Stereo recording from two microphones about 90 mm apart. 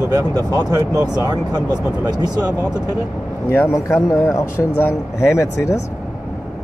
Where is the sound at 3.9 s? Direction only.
30° left (ahead or behind).